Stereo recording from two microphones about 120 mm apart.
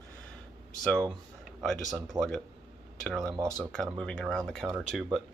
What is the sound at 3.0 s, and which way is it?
Speech, centre (ahead or behind).